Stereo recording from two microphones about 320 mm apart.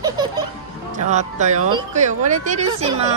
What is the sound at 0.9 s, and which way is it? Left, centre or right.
Speech, right.